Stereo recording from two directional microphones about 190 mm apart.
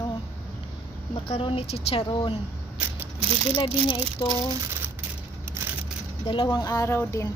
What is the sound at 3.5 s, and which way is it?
Speech, 25° left (ahead or behind).